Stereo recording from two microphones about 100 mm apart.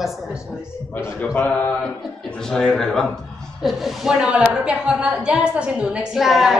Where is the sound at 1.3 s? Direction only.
20° left (ahead or behind).